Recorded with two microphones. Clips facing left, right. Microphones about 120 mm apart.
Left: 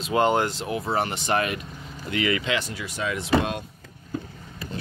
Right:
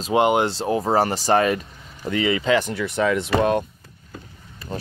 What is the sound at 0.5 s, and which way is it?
Speech, 35° right (ahead or behind).